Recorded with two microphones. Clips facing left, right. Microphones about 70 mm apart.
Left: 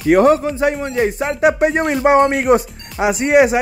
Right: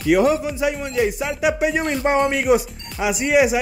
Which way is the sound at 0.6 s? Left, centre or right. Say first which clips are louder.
Left 4 dB; left.